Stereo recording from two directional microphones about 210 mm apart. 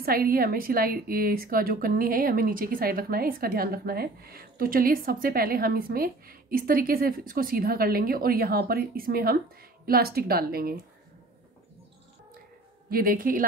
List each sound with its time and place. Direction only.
0.0 s a woman's voice: 45° right (ahead or behind)
12.9 s a woman's voice: 45° right (ahead or behind)